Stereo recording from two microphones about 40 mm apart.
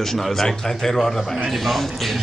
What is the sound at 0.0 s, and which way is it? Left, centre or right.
A man's voice, centre.